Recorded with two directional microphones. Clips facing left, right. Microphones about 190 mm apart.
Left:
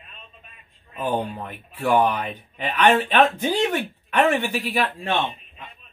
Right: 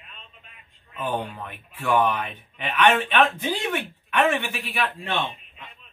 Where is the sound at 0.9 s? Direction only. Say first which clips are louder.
Left 3 dB; 35° left (ahead or behind).